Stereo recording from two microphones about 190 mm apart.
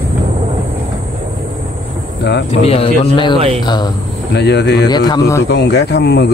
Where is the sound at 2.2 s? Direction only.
65° left (ahead or behind).